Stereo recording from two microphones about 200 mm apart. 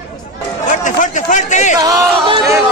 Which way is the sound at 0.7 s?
40° left (ahead or behind).